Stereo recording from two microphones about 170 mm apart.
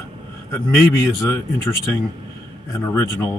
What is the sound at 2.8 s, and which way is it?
Speech, 15° left (ahead or behind).